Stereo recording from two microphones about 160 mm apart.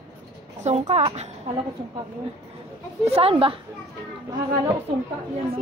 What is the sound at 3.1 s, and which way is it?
Speech, 35° right (ahead or behind).